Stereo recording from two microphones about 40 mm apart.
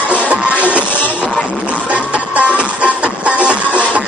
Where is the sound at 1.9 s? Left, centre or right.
Right.